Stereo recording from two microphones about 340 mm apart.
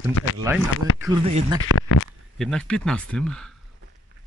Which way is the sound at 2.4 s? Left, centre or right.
Centre.